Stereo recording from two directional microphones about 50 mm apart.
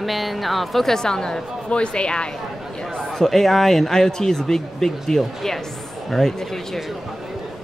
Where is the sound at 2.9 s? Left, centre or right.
Centre.